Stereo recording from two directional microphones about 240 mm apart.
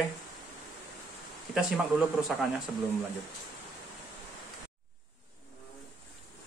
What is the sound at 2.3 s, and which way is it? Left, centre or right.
Speech, centre.